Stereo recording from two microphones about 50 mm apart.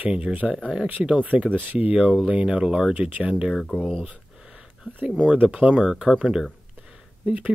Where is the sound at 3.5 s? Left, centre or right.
Centre.